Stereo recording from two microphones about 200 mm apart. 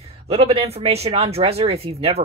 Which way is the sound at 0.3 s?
30° right (ahead or behind).